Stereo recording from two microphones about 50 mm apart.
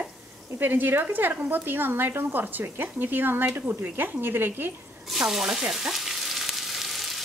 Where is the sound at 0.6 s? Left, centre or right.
Right.